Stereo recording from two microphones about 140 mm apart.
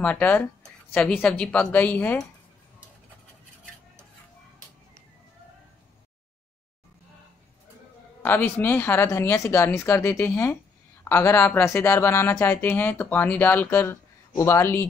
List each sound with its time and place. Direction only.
0.0 s speech: 10° left (ahead or behind)
8.2 s speech: 15° left (ahead or behind)